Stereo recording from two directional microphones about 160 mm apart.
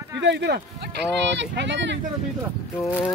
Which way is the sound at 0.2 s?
90° right.